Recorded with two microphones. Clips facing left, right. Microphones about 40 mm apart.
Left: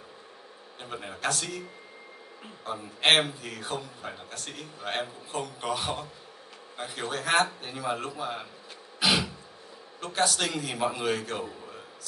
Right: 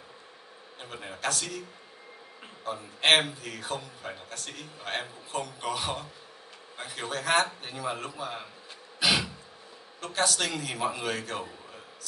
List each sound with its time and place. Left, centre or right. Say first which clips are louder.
0.9 s a man's voice: left 1 dB; centre
2.6 s a man's voice: left 1 dB; centre
9.0 s throat clearing: left 1 dB; centre
9.9 s a man's voice: left 1 dB; centre